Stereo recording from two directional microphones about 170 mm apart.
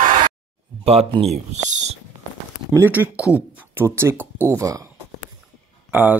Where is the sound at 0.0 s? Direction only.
50° right (ahead or behind).